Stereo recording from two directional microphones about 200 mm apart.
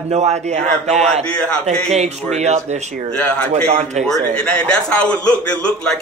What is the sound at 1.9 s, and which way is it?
A man's voice, 35° right (ahead or behind).